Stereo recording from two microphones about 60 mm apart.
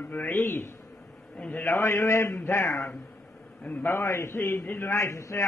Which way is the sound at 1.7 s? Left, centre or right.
Left.